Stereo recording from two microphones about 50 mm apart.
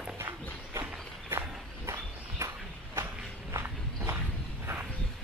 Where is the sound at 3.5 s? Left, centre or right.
Right.